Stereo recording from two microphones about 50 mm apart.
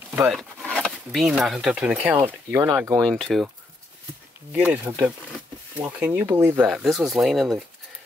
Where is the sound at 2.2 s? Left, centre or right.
Right.